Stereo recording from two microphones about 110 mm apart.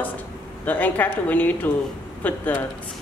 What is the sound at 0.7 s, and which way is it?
Speech, 15° left (ahead or behind).